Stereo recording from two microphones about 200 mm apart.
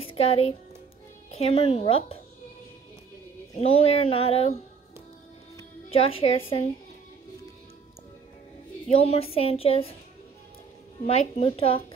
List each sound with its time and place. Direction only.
0.0 s speech: 30° left (ahead or behind)
3.5 s a woman's voice: 30° left (ahead or behind)
5.9 s a woman's voice: 30° left (ahead or behind)
8.8 s a woman's voice: 30° left (ahead or behind)
11.1 s a woman's voice: 30° left (ahead or behind)